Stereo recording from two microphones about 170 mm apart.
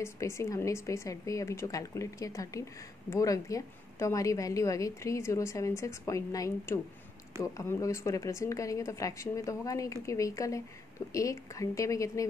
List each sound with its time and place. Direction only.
0.0 s a woman's voice: 15° left (ahead or behind)